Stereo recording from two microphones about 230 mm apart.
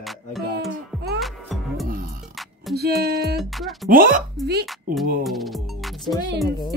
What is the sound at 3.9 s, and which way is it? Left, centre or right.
Speech, right.